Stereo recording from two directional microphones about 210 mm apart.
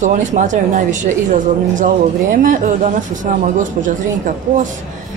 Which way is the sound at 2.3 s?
40° right (ahead or behind).